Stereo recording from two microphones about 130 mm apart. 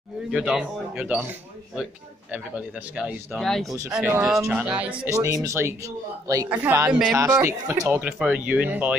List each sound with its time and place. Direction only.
0.3 s speech: 5° right (ahead or behind)
3.3 s speech: 5° left (ahead or behind)
3.7 s speech: 20° right (ahead or behind)
4.5 s speech: 5° right (ahead or behind)
5.1 s speech: 25° right (ahead or behind)
7.9 s speech: 10° right (ahead or behind)